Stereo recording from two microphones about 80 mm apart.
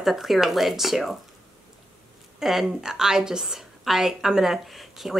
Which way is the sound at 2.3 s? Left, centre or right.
Centre.